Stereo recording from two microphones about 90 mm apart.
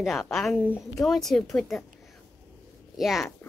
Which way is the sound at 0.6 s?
15° right (ahead or behind).